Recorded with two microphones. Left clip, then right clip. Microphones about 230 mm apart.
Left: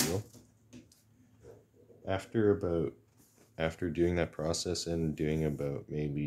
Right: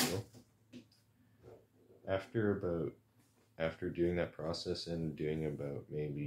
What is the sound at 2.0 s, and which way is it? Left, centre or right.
Speech, left.